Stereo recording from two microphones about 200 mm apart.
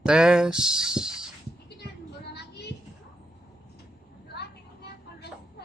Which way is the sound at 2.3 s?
55° left (ahead or behind).